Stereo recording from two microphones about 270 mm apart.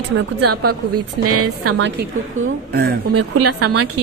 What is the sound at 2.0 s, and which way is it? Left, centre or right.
Speech, right.